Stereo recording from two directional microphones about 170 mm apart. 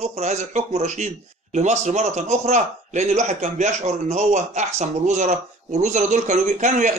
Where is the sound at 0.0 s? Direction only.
40° right (ahead or behind).